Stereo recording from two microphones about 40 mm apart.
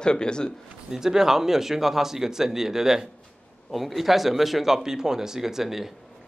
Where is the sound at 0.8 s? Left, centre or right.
Centre.